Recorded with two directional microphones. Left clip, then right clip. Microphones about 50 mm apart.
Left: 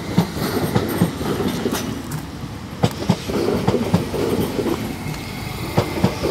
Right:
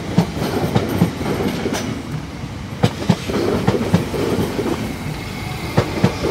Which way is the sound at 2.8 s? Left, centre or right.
Left.